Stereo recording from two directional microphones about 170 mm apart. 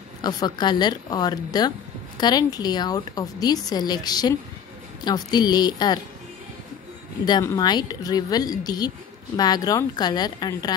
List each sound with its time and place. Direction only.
0.2 s a woman's voice: 25° left (ahead or behind)
7.4 s a woman's voice: 25° left (ahead or behind)